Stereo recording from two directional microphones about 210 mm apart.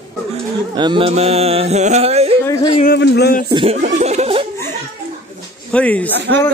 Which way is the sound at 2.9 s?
50° left (ahead or behind).